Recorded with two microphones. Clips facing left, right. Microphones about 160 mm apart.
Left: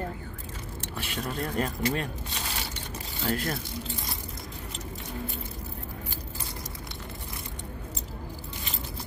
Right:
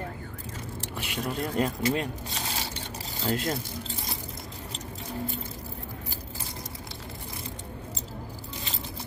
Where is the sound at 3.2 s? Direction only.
20° right (ahead or behind).